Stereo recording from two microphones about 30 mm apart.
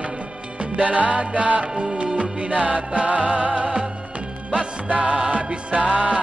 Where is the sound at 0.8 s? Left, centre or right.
Right.